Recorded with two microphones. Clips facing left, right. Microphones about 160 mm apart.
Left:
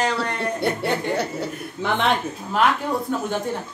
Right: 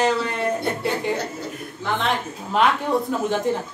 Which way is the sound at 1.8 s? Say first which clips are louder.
Left 2 dB; 70° left (ahead or behind).